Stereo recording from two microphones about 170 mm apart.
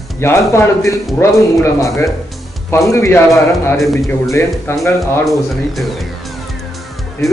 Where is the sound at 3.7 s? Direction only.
Centre (ahead or behind).